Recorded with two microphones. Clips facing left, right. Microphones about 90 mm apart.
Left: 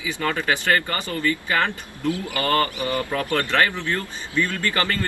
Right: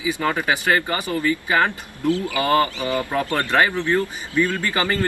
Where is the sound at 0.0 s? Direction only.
20° right (ahead or behind).